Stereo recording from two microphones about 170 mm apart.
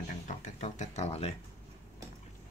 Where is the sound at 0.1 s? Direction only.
40° left (ahead or behind).